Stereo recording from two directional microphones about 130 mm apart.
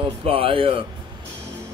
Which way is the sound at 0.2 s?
45° right (ahead or behind).